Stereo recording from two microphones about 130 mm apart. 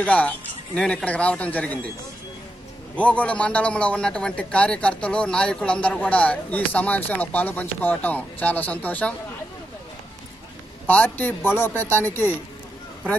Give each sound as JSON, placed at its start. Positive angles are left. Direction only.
{"t": 0.0, "sound": "a man's voice", "side_deg": 10}
{"t": 3.0, "sound": "a man's voice", "side_deg": 10}
{"t": 10.9, "sound": "a man's voice", "side_deg": 15}